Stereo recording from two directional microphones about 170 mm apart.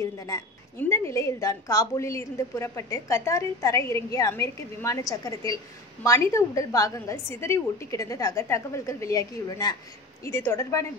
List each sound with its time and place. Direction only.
0.0 s a woman's voice: 20° left (ahead or behind)